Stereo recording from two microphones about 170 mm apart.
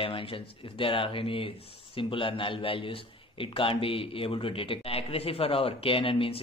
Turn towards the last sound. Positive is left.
turn(degrees=35)  # may be behind; listen again after turning